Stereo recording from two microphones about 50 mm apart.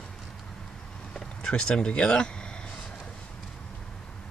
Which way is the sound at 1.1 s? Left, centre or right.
Centre.